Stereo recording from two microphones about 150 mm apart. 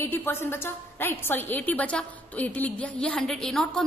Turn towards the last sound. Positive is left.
turn(degrees=5)  # may be behind; listen again after turning